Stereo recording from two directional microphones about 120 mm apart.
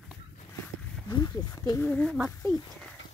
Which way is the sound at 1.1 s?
35° left (ahead or behind).